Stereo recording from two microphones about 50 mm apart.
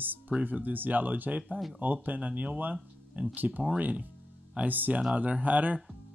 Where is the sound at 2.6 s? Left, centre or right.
Right.